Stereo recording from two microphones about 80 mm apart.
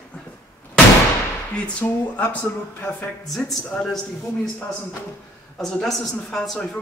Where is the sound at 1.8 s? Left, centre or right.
Centre.